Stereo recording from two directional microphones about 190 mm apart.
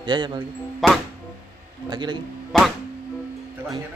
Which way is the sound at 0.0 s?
25° right (ahead or behind).